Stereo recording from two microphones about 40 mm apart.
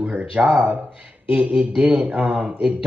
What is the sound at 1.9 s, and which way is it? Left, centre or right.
Speech, right.